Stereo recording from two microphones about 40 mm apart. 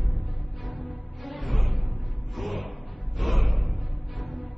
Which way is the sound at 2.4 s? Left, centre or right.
Centre.